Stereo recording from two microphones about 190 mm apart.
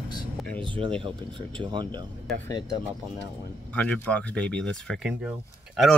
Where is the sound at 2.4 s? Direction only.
20° left (ahead or behind).